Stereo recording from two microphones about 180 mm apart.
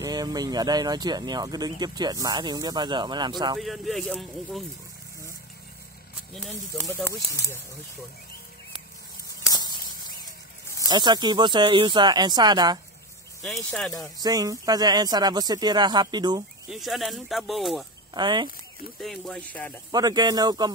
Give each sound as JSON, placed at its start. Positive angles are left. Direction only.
{"t": 0.0, "sound": "speech", "side_deg": -20}
{"t": 3.5, "sound": "speech", "side_deg": 0}
{"t": 6.3, "sound": "speech", "side_deg": 5}
{"t": 9.5, "sound": "a sound", "side_deg": 25}
{"t": 10.9, "sound": "speech", "side_deg": -25}
{"t": 13.7, "sound": "speech", "side_deg": 5}
{"t": 14.1, "sound": "speech", "side_deg": -20}
{"t": 16.7, "sound": "speech", "side_deg": 0}
{"t": 18.1, "sound": "speech", "side_deg": -25}
{"t": 18.9, "sound": "speech", "side_deg": 0}
{"t": 19.9, "sound": "speech", "side_deg": -20}